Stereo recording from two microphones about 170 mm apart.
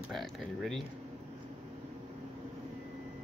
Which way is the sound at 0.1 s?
Centre (ahead or behind).